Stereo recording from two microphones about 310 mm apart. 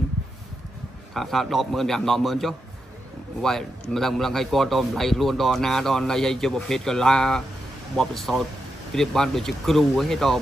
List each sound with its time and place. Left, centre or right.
1.1 s a man's voice: centre
3.9 s a man's voice: centre